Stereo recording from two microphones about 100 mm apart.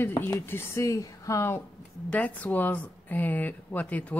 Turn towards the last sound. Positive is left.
turn(degrees=15)  # may be behind; listen again after turning